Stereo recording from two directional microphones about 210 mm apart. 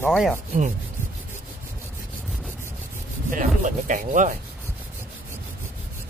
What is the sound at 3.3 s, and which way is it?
Rub, 40° right (ahead or behind).